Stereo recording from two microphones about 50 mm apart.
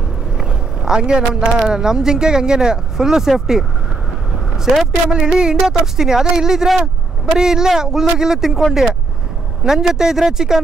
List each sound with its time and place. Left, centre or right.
0.4 s vehicle: centre
1.7 s speech: centre
9.7 s speech: centre